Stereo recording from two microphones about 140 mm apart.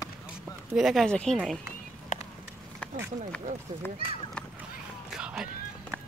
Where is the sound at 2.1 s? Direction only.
65° left (ahead or behind).